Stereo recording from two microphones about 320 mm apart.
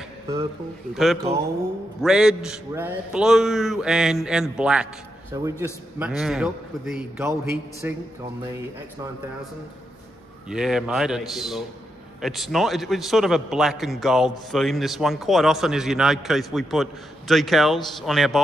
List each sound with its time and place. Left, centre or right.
0.9 s a man's voice: centre
10.5 s a man's voice: centre